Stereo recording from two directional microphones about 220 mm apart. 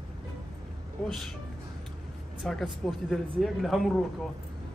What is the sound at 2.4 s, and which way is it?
Speech, 5° left (ahead or behind).